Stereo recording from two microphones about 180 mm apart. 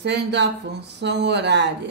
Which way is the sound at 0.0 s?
70° right (ahead or behind).